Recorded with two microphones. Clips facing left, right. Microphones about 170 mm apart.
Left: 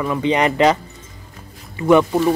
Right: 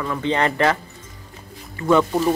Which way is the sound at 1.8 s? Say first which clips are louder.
Left 4 dB; 15° left (ahead or behind).